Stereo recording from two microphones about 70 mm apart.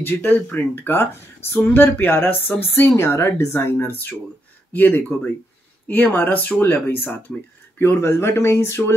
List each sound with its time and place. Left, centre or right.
0.0 s speech: left